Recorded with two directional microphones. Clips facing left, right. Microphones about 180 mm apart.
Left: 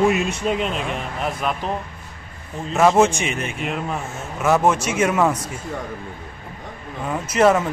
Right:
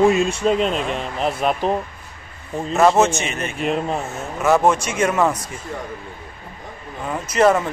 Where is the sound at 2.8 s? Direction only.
10° left (ahead or behind).